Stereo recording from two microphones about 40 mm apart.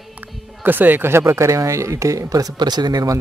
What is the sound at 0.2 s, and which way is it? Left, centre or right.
Music, right.